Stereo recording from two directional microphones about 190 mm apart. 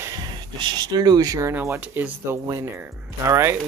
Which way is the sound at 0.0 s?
20° right (ahead or behind).